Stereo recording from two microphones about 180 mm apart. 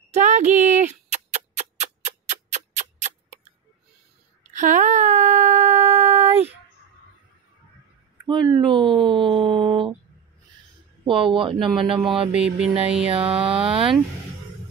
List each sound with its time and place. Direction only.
0.1 s a sound: 40° right (ahead or behind)
4.5 s a sound: 45° right (ahead or behind)
8.3 s speech: 25° right (ahead or behind)
11.2 s speech: 30° right (ahead or behind)
12.3 s mantra: 5° right (ahead or behind)
13.1 s speech: 30° right (ahead or behind)